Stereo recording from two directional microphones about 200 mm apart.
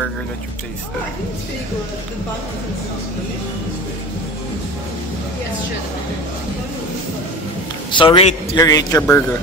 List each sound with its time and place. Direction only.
7.9 s a man's voice: 25° left (ahead or behind)